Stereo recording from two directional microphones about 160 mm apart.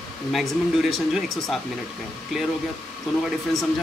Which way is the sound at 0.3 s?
Centre (ahead or behind).